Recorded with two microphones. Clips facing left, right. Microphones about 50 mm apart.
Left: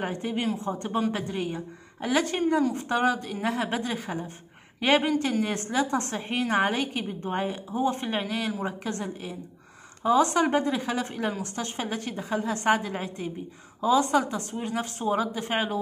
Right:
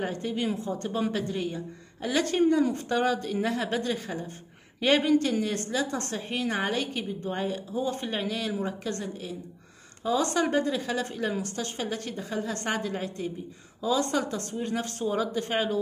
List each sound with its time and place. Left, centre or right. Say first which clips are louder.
0.0 s a woman's voice: left 1 dB; left